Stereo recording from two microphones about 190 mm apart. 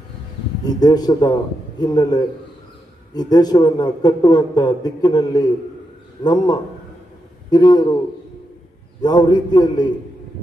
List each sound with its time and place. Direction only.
0.7 s a man's voice: 20° left (ahead or behind)
9.0 s a man's voice: 20° left (ahead or behind)